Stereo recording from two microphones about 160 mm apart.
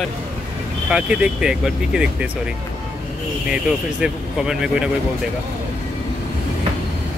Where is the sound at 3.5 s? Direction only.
5° right (ahead or behind).